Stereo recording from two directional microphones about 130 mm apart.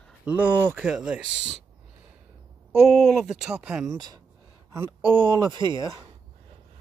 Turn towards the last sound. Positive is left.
turn(degrees=-35)  # may be behind; listen again after turning